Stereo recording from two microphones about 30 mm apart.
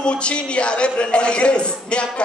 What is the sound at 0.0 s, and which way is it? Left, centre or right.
A man's voice, left.